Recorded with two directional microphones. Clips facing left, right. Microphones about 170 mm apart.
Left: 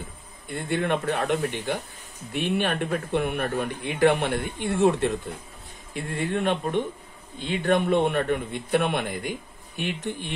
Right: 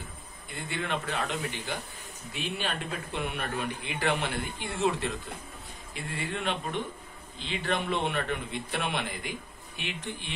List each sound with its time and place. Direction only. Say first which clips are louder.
0.5 s a man's voice: left 8 dB; 55° left (ahead or behind)